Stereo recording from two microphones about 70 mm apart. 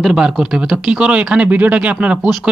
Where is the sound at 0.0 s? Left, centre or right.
Centre.